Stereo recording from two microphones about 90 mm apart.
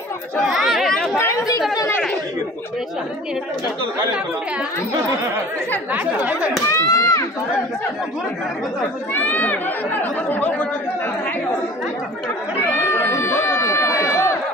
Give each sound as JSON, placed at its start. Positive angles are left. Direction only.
{"t": 0.4, "sound": "chatter", "side_deg": -5}
{"t": 6.7, "sound": "a child's voice", "side_deg": 35}
{"t": 9.1, "sound": "speech", "side_deg": 20}
{"t": 12.6, "sound": "crowd", "side_deg": 25}